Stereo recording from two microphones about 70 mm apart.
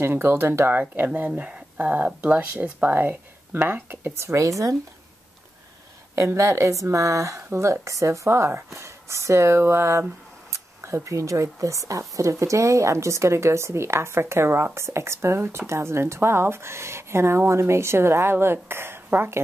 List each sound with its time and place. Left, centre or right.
0.0 s speech: right
6.1 s speech: right
10.5 s camera: right
11.1 s speech: right